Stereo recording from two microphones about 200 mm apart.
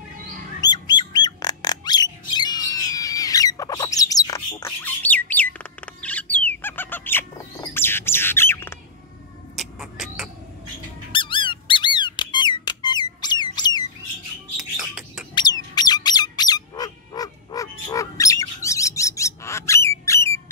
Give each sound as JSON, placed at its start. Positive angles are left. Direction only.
{"t": 0.6, "sound": "bird", "side_deg": 20}
{"t": 2.3, "sound": "a sound", "side_deg": 20}
{"t": 9.6, "sound": "music", "side_deg": 0}
{"t": 11.1, "sound": "squeak", "side_deg": 25}
{"t": 14.6, "sound": "music", "side_deg": -5}
{"t": 15.3, "sound": "bird", "side_deg": 20}